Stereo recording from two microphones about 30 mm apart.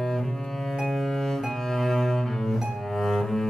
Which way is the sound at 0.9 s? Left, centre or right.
Centre.